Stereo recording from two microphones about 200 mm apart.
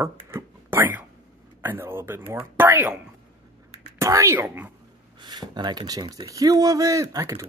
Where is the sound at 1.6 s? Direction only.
10° right (ahead or behind).